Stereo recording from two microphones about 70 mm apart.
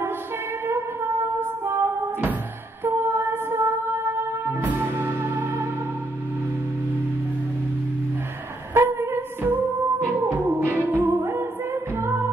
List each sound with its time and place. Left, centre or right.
0.7 s music: right
8.7 s music: right
11.1 s a capella: right
12.0 s music: right